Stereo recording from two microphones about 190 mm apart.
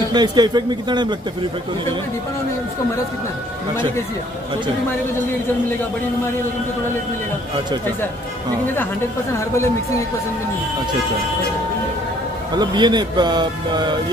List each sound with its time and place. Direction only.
0.1 s speech: 20° right (ahead or behind)
9.4 s speech: 15° left (ahead or behind)
12.5 s speech: 25° right (ahead or behind)